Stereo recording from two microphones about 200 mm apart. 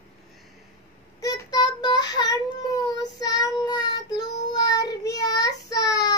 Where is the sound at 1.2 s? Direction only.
20° left (ahead or behind).